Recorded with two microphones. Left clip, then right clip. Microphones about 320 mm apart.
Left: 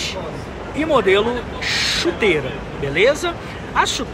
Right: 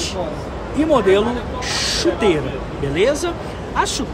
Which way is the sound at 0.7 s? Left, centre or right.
Centre.